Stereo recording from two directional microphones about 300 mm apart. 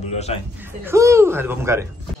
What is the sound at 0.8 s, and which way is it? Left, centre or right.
Speech, centre.